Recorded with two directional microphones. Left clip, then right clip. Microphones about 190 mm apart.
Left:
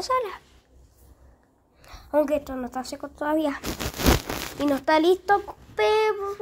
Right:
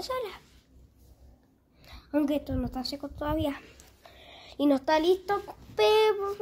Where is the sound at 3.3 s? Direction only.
5° left (ahead or behind).